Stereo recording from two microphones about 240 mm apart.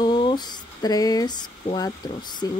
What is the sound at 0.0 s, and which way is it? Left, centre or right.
Speech, centre.